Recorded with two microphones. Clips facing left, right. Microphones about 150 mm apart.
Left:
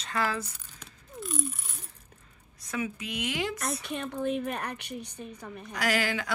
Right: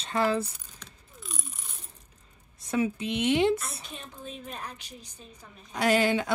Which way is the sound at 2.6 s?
25° right (ahead or behind).